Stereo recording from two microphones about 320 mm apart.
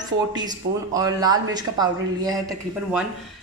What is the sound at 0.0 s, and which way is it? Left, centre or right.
Speech, centre.